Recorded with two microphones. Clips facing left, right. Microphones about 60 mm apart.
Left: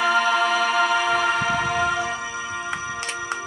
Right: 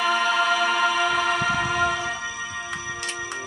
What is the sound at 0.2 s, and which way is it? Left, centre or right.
Music, centre.